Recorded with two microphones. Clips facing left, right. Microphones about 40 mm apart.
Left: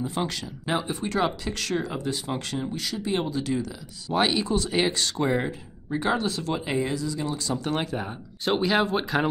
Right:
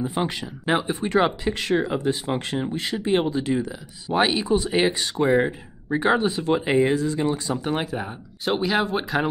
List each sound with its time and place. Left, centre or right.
0.0 s speech: right
7.7 s speech: centre